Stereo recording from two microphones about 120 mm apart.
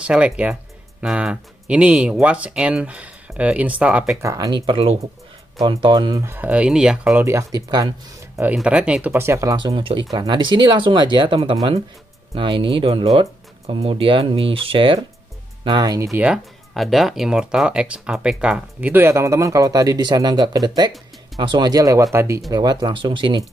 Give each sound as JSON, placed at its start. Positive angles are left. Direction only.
{"t": 0.0, "sound": "speech", "side_deg": -10}
{"t": 4.2, "sound": "speech", "side_deg": -30}
{"t": 4.6, "sound": "speech", "side_deg": -55}
{"t": 6.2, "sound": "speech", "side_deg": -15}
{"t": 7.2, "sound": "speech", "side_deg": -25}
{"t": 8.5, "sound": "speech", "side_deg": -10}
{"t": 9.1, "sound": "speech", "side_deg": -20}
{"t": 9.8, "sound": "speech", "side_deg": -45}
{"t": 15.6, "sound": "speech", "side_deg": -35}
{"t": 16.7, "sound": "speech", "side_deg": 0}
{"t": 22.5, "sound": "speech", "side_deg": -35}